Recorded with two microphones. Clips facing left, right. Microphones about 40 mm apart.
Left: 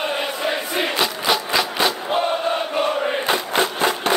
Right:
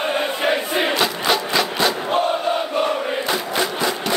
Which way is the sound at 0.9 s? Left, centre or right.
Centre.